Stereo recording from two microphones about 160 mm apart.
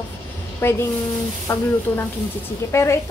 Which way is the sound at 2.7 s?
15° left (ahead or behind).